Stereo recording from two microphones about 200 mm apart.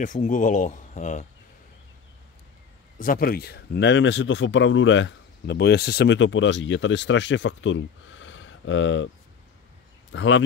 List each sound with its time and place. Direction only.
0.0 s speech: 40° left (ahead or behind)
3.0 s speech: 45° left (ahead or behind); by 9.1 s 70° left (ahead or behind)
10.1 s speech: 70° left (ahead or behind)